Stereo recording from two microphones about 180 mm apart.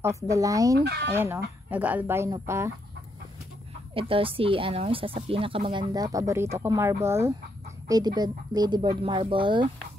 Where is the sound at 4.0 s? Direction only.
30° right (ahead or behind).